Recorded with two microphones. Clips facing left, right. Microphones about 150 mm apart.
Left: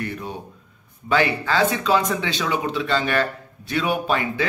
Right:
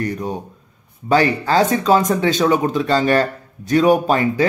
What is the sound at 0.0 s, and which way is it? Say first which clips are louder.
Speech: right 6 dB; 40° right (ahead or behind).